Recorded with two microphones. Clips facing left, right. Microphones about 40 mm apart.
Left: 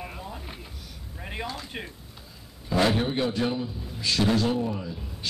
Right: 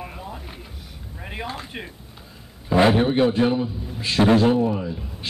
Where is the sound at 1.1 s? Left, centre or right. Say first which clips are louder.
Right 2 dB; centre.